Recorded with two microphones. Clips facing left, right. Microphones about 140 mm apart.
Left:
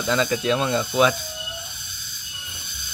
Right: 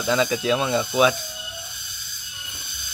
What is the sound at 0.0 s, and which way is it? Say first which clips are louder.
Speech: right 1 dB; 5° right (ahead or behind).